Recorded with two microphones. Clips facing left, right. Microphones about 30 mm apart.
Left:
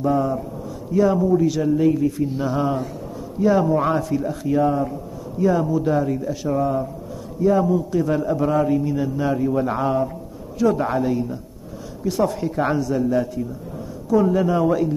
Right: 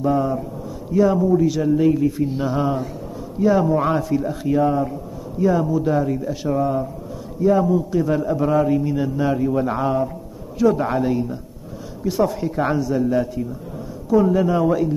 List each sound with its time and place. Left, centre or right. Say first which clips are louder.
0.0 s a man's voice: right 1 dB; centre